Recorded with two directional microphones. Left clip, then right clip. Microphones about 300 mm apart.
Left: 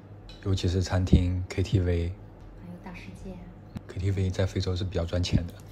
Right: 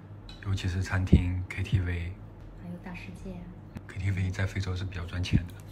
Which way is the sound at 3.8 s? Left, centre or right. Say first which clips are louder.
Left 5 dB; centre.